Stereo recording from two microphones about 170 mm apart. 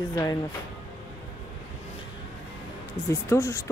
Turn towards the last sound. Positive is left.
turn(degrees=15)  # may be behind; listen again after turning